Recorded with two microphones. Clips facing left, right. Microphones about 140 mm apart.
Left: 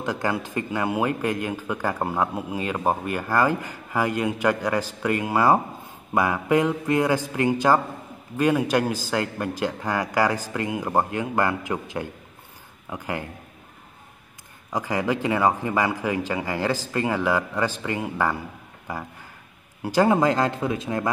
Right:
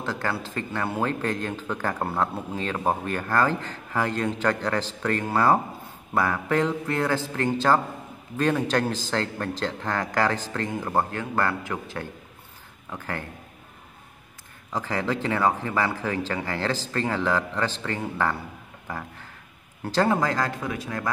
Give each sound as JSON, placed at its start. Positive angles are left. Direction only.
{"t": 0.0, "sound": "speech", "side_deg": 15}
{"t": 14.7, "sound": "speech", "side_deg": 15}